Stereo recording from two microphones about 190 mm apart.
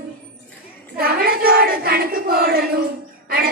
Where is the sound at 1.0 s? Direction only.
50° right (ahead or behind).